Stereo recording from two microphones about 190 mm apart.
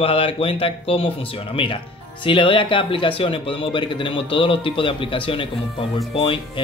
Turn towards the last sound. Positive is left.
turn(degrees=30)  # may be behind; listen again after turning